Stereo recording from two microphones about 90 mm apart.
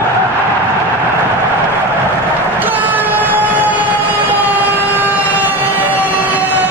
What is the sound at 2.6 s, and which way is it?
Vehicle, 20° right (ahead or behind).